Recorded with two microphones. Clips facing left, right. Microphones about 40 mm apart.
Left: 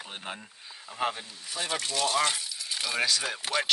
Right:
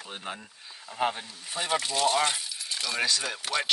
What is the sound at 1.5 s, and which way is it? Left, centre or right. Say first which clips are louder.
Speech: right 3 dB; right.